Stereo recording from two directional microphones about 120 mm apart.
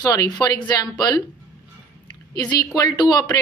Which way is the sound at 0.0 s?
30° left (ahead or behind).